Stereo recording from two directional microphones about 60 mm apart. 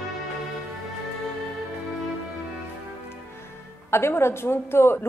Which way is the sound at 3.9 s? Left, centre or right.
Left.